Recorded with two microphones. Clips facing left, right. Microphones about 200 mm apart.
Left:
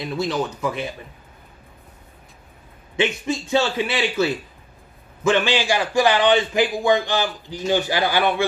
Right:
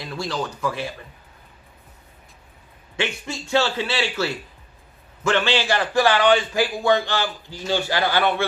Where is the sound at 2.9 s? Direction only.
20° left (ahead or behind).